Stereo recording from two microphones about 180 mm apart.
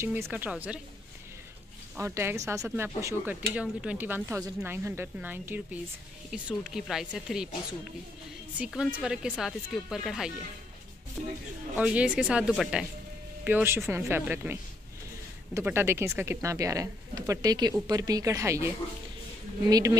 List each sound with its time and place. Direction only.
0.0 s speech: 15° right (ahead or behind)
2.0 s speech: 15° right (ahead or behind)
8.5 s speech: 5° right (ahead or behind)
19.7 s speech: 20° right (ahead or behind)